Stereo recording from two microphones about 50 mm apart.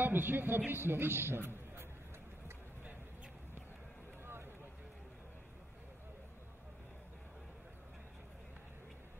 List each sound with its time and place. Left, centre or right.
0.0 s a woman's voice: right